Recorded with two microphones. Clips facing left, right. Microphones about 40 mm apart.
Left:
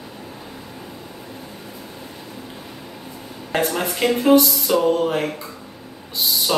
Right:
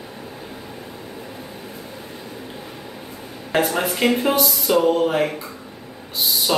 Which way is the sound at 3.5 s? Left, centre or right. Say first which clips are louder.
Right 2 dB; centre.